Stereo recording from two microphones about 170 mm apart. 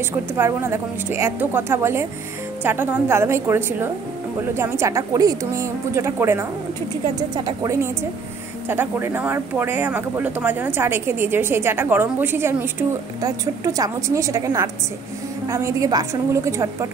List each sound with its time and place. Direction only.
0.4 s a woman's voice: 15° right (ahead or behind)